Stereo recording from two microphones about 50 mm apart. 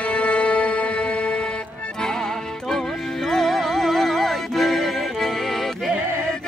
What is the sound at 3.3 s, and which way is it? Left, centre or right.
Music, centre.